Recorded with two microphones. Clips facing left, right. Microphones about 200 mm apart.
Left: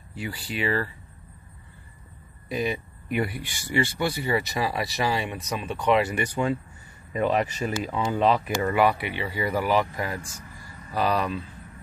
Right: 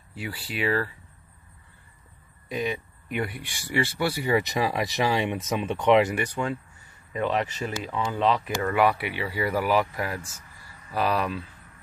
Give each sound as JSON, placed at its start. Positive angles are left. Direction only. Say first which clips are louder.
{"t": 0.1, "sound": "speech", "louder": "left 2 dB", "side_deg": -5}
{"t": 2.5, "sound": "speech", "louder": "left 1 dB", "side_deg": 5}
{"t": 6.1, "sound": "speech", "louder": "left 2 dB", "side_deg": 0}
{"t": 8.7, "sound": "speech", "louder": "even", "side_deg": 0}